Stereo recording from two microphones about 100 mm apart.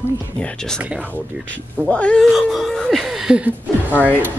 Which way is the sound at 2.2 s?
Centre (ahead or behind).